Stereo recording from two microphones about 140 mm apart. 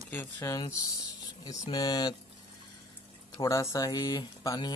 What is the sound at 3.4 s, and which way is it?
Speech, 20° left (ahead or behind).